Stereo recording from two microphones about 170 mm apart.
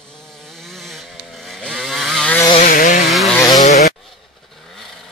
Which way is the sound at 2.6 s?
55° left (ahead or behind).